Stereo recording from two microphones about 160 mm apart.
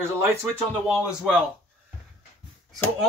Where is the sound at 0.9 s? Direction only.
5° right (ahead or behind).